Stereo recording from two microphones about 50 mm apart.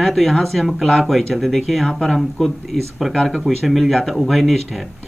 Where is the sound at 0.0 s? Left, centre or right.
Centre.